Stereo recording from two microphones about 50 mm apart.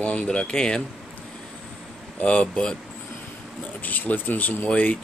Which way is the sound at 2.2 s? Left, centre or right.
Left.